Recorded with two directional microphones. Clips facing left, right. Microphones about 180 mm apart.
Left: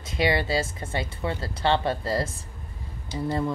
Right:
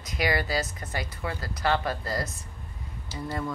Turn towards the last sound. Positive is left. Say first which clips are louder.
# left 5 dB
turn(degrees=25)  # may be behind; listen again after turning